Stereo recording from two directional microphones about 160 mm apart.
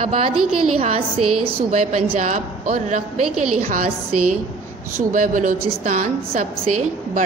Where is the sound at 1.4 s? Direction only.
40° right (ahead or behind).